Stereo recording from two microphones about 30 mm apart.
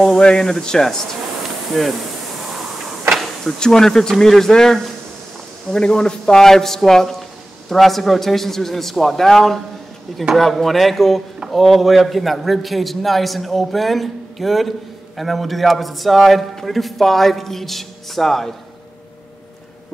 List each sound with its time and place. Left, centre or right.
0.2 s speech: left
1.7 s a man's voice: centre
3.5 s a man's voice: left